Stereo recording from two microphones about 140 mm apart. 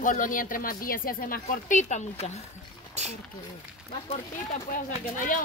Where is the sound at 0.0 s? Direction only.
70° left (ahead or behind); by 2.3 s 55° left (ahead or behind).